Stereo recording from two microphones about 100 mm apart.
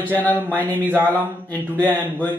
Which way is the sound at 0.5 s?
15° left (ahead or behind).